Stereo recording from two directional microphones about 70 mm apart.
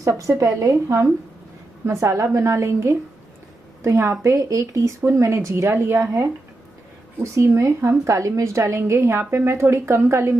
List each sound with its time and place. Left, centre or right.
0.0 s a woman's voice: right
4.4 s a woman's voice: right
5.0 s speech: right
7.3 s a woman's voice: right